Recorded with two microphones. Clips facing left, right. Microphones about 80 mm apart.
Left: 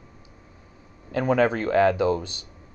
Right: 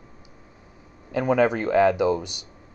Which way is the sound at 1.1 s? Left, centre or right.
Centre.